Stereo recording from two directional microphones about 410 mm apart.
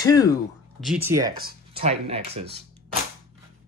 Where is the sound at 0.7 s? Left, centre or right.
Centre.